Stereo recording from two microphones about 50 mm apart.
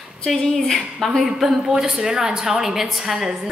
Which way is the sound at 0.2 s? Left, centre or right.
Centre.